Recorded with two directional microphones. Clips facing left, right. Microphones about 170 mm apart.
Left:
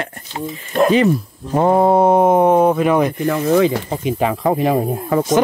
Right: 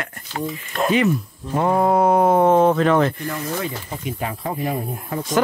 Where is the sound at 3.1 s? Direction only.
90° left.